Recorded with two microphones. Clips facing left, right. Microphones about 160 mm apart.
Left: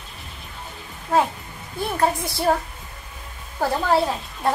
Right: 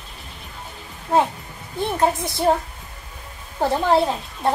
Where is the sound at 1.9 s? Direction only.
20° right (ahead or behind).